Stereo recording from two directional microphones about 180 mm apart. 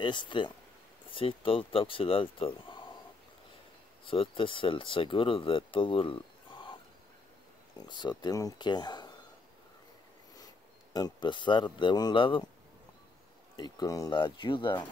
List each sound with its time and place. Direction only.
0.0 s speech: 25° left (ahead or behind)
4.0 s speech: 30° left (ahead or behind)
8.0 s speech: 25° left (ahead or behind)
10.3 s speech: 20° left (ahead or behind)
13.6 s speech: 20° left (ahead or behind)